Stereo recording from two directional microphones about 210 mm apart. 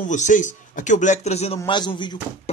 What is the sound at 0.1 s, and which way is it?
Speech, 35° left (ahead or behind).